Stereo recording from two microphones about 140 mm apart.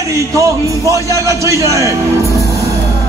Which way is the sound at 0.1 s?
20° right (ahead or behind).